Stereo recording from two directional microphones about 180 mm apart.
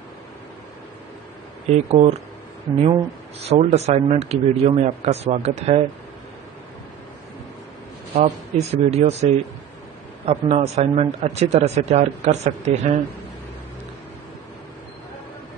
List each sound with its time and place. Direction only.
1.7 s speech: 35° right (ahead or behind)
8.1 s speech: 35° right (ahead or behind)